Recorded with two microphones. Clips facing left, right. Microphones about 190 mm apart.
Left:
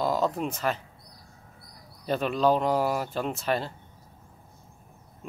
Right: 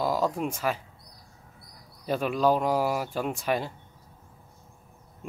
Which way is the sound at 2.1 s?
10° right (ahead or behind).